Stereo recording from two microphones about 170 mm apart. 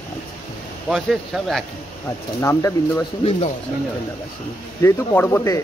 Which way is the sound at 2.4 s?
15° left (ahead or behind).